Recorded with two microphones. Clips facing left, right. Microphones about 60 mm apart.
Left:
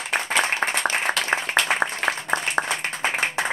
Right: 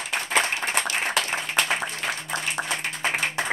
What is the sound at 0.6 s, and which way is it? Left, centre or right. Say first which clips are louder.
Applause: left 3 dB; left.